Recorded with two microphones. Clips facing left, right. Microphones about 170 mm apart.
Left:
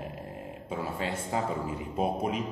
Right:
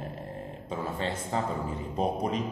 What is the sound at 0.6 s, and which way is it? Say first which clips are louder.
A man's voice: right 1 dB; 10° left (ahead or behind).